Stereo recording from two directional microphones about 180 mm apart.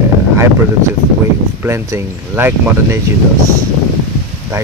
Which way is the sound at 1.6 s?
15° right (ahead or behind).